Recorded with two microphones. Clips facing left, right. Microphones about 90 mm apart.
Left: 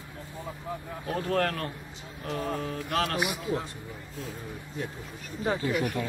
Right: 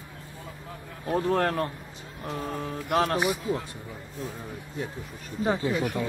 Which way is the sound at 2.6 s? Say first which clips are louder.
Right 4 dB; 20° right (ahead or behind).